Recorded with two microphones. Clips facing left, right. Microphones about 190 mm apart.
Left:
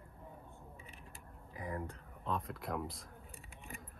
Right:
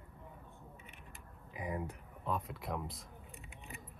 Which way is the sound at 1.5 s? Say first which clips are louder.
Right 2 dB; 15° right (ahead or behind).